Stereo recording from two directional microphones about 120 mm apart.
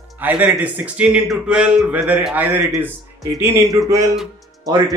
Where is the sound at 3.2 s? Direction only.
25° right (ahead or behind).